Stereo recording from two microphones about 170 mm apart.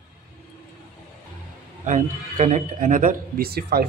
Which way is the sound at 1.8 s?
45° right (ahead or behind).